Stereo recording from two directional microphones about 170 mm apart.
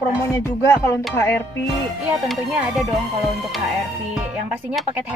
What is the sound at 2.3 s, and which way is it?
Music, centre (ahead or behind).